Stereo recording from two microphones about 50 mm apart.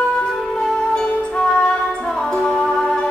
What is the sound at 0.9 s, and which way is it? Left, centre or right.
Music, left.